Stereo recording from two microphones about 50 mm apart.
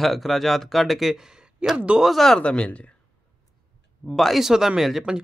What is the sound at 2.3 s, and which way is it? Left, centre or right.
Speech, left.